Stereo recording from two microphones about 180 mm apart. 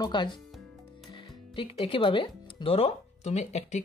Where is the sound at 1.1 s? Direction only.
30° left (ahead or behind).